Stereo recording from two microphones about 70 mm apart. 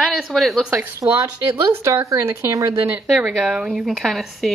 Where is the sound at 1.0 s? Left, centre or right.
Right.